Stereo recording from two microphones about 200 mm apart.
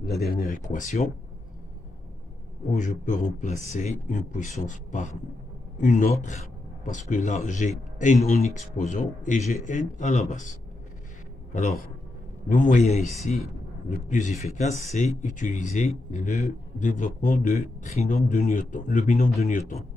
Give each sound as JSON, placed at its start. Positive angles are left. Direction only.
{"t": 0.2, "sound": "speech", "side_deg": 45}
{"t": 2.7, "sound": "speech", "side_deg": 35}
{"t": 12.4, "sound": "speech", "side_deg": 40}